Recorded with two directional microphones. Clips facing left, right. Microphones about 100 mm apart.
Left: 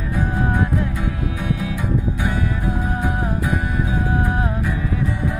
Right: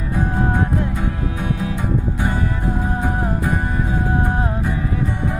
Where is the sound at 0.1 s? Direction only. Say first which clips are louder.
Right 1 dB; 35° right (ahead or behind).